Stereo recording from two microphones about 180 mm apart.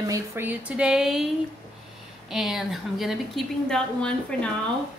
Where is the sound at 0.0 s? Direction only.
15° right (ahead or behind); by 4.5 s 5° left (ahead or behind).